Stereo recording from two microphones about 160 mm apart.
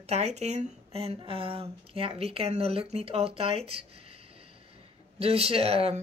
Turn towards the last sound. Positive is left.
turn(degrees=-40)  # may be behind; listen again after turning